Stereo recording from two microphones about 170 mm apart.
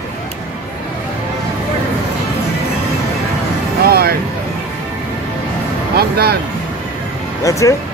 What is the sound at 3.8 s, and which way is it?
Vehicle, 65° right (ahead or behind).